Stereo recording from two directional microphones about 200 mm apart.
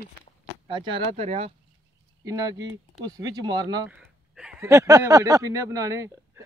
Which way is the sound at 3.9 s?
5° right (ahead or behind).